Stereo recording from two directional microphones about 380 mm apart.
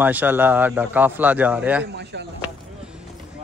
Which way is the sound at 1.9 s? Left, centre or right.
Right.